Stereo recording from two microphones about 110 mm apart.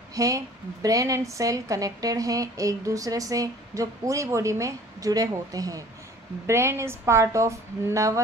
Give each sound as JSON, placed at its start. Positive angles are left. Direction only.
{"t": 0.1, "sound": "a woman's voice", "side_deg": -30}